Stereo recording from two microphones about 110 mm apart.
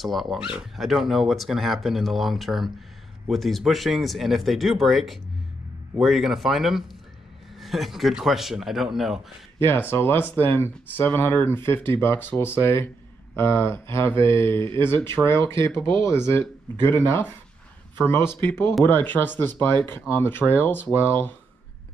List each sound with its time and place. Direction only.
0.0 s speech: centre (ahead or behind)
9.6 s speech: 20° left (ahead or behind)